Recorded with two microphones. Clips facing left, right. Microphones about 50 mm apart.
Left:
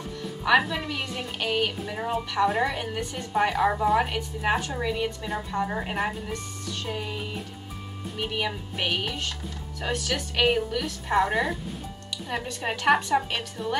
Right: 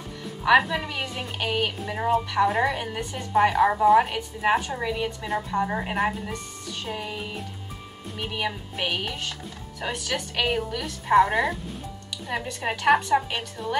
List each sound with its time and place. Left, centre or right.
0.4 s a woman's voice: centre